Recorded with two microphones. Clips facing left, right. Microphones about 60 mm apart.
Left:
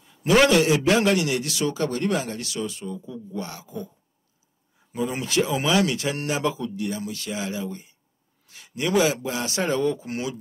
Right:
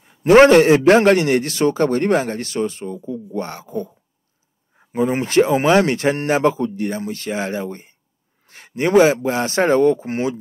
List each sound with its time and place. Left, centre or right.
0.0 s a man's voice: right